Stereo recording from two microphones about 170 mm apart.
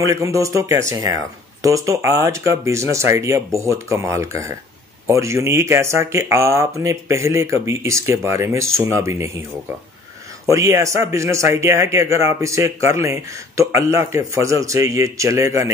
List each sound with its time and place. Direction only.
0.0 s speech: 20° right (ahead or behind)
10.4 s speech: 20° right (ahead or behind)